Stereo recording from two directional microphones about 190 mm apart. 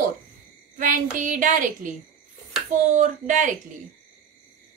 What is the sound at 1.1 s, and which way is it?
A woman's voice, 45° right (ahead or behind).